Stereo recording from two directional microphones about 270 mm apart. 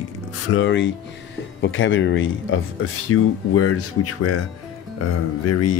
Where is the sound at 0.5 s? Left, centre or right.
Left.